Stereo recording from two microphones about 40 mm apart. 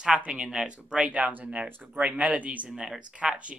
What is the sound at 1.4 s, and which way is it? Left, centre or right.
Speech, right.